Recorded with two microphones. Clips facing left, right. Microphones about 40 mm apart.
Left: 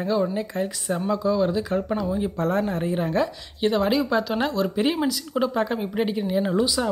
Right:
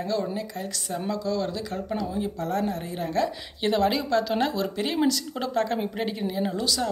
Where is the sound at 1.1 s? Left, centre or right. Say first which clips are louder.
Left 6 dB; centre.